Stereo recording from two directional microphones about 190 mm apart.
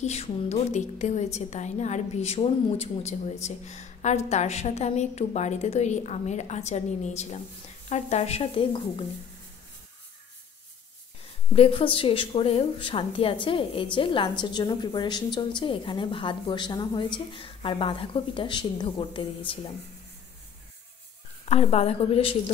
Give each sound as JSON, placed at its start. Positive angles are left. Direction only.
{"t": 0.0, "sound": "a woman's voice", "side_deg": 35}
{"t": 11.5, "sound": "a woman's voice", "side_deg": 30}
{"t": 21.5, "sound": "a woman's voice", "side_deg": 35}